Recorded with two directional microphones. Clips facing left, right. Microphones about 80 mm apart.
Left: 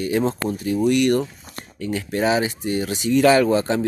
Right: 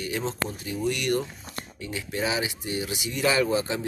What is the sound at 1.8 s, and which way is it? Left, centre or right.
A man's voice, left.